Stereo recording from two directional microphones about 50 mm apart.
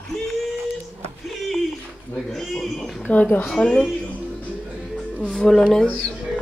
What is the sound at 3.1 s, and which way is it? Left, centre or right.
Speech, left.